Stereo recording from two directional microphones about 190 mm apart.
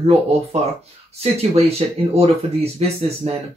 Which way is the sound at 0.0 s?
35° right (ahead or behind).